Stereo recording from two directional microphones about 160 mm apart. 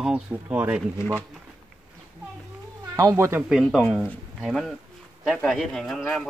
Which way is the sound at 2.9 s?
20° right (ahead or behind).